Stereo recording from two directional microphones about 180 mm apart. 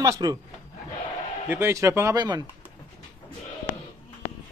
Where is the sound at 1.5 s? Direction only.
15° right (ahead or behind).